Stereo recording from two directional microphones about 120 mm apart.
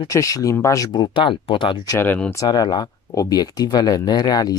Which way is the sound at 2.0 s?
10° left (ahead or behind).